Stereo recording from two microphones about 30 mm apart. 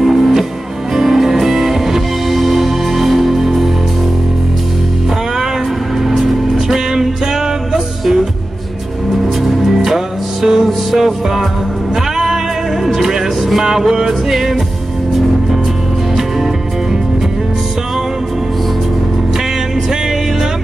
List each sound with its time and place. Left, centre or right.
0.0 s music: centre
6.7 s music: centre
9.8 s music: centre
12.8 s music: centre